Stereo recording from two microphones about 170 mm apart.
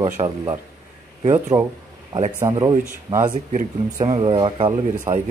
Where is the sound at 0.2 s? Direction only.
30° right (ahead or behind).